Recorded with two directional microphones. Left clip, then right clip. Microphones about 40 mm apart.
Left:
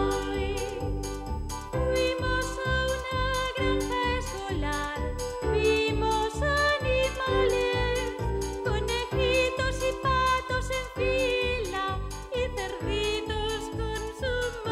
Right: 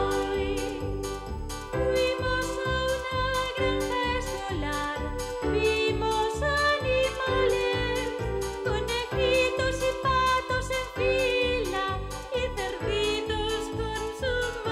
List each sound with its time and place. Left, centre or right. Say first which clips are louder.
0.0 s music: right 2 dB; left
1.8 s music: right 1 dB; left
5.4 s music: even; left
12.9 s music: right 1 dB; left